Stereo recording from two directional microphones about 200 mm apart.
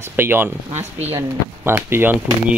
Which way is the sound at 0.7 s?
30° right (ahead or behind).